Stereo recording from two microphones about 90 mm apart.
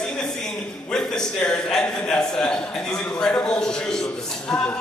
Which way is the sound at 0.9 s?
5° left (ahead or behind).